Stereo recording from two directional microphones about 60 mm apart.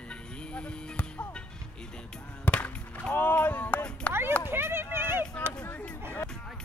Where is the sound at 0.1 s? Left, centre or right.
Centre.